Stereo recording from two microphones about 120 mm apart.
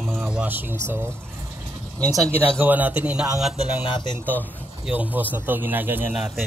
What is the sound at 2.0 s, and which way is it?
Speech, 30° right (ahead or behind).